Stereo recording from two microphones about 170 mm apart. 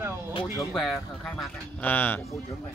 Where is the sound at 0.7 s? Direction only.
Centre (ahead or behind).